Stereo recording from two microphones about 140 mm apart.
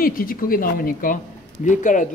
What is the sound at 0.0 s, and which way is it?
Speech, 90° left.